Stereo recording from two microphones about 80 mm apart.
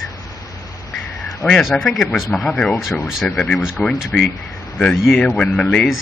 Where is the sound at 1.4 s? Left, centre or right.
Left.